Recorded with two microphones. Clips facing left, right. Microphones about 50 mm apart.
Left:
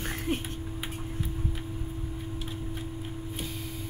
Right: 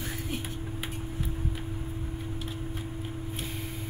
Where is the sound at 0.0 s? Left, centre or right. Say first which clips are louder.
Left 4 dB; left.